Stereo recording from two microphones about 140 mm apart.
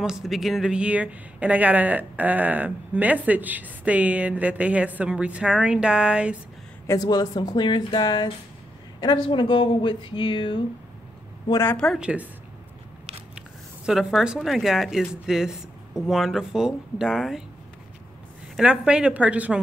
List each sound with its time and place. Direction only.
0.0 s speech: 5° right (ahead or behind)
6.9 s speech: 30° left (ahead or behind)
11.6 s a woman's voice: 5° left (ahead or behind)
12.0 s speech: 10° right (ahead or behind)
13.8 s speech: 5° right (ahead or behind)
18.6 s speech: 5° right (ahead or behind)